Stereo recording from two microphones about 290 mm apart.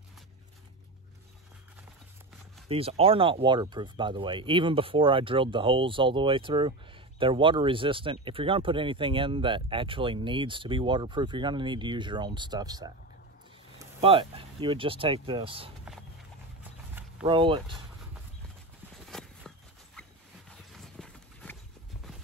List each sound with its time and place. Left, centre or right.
2.7 s speech: centre
17.3 s speech: centre
19.0 s a sound: centre
20.0 s dog: centre